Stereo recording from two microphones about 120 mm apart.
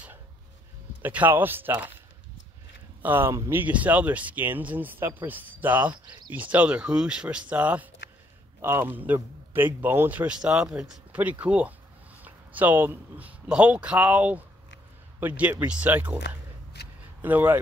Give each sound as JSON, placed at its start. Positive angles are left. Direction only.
{"t": 1.0, "sound": "a man's voice", "side_deg": -15}
{"t": 3.0, "sound": "a man's voice", "side_deg": -20}
{"t": 17.2, "sound": "speech", "side_deg": -15}